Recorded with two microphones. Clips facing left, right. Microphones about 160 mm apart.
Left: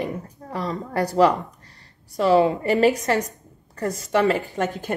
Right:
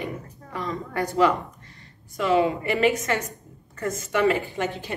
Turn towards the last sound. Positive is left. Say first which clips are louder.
# left 3 dB
turn(degrees=45)  # may be behind; listen again after turning